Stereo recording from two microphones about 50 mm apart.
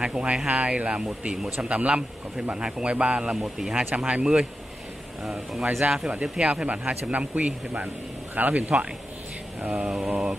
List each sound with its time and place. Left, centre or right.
0.0 s speech: right
3.9 s speech: right
5.7 s speech: right
6.2 s speech: centre
9.6 s mantra: right
9.8 s speech: centre